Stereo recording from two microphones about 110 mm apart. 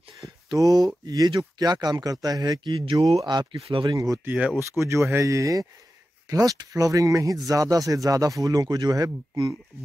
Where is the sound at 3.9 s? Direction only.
30° right (ahead or behind).